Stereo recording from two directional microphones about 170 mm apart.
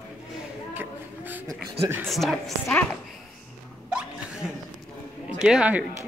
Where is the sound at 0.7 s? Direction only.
10° right (ahead or behind).